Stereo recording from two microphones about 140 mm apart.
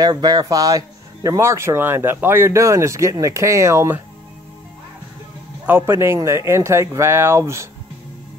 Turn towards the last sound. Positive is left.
turn(degrees=-20)  # may be behind; listen again after turning